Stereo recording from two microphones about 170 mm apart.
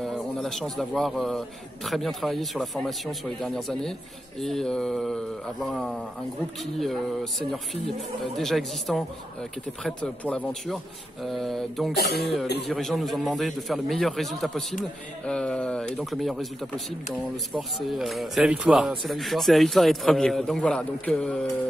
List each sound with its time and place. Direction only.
0.0 s speech: 5° left (ahead or behind)
11.9 s speech: 70° left (ahead or behind)
12.2 s speech: centre (ahead or behind)